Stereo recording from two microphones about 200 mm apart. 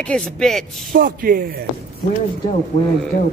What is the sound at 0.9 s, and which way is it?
Speech, 45° right (ahead or behind).